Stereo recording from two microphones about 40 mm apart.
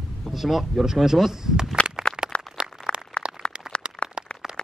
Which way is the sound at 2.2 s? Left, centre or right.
Centre.